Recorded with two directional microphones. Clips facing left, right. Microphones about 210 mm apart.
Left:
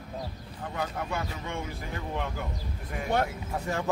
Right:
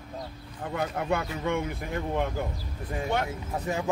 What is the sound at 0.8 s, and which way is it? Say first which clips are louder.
Speech: right 4 dB; 55° right (ahead or behind).